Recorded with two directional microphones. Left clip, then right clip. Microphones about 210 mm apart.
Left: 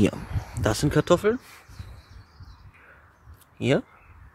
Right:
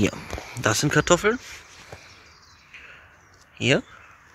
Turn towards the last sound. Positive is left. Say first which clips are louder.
# right 2 dB
turn(degrees=5)  # may be behind; listen again after turning